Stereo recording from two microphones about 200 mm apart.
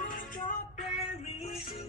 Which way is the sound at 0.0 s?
45° left (ahead or behind).